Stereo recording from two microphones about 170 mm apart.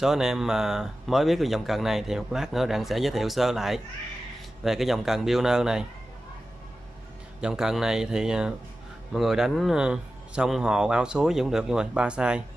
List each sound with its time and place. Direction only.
0.0 s speech: 5° right (ahead or behind)
7.3 s speech: 5° right (ahead or behind)